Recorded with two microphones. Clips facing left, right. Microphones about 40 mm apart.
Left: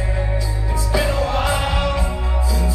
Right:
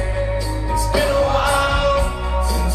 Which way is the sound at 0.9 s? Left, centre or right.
Centre.